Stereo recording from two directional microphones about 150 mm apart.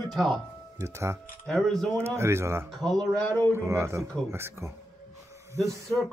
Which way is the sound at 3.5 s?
20° right (ahead or behind).